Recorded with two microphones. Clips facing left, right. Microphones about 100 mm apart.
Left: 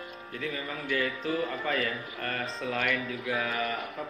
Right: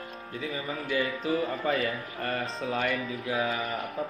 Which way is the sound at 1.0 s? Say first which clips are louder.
Right 2 dB; 30° right (ahead or behind).